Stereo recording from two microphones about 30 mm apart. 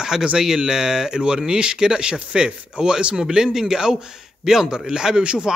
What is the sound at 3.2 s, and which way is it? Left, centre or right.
A man's voice, right.